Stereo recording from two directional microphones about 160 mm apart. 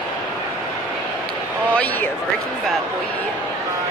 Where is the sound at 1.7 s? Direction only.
10° left (ahead or behind).